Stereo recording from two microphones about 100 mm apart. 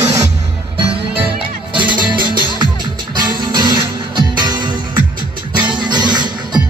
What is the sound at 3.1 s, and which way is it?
Music, 45° right (ahead or behind).